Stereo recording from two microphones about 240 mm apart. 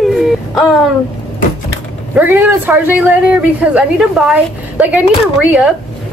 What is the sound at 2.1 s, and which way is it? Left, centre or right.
A woman's voice, centre.